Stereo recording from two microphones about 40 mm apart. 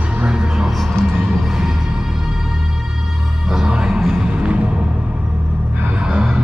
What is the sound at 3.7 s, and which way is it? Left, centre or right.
Music, right.